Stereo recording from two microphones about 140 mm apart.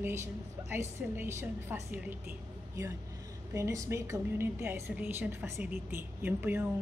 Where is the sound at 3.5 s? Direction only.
20° right (ahead or behind).